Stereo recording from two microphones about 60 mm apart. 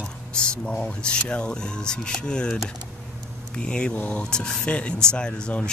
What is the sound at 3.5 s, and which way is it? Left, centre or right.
Speech, centre.